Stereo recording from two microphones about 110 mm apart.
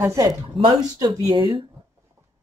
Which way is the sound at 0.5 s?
50° right (ahead or behind).